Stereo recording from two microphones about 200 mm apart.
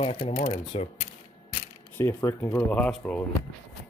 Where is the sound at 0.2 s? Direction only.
40° left (ahead or behind).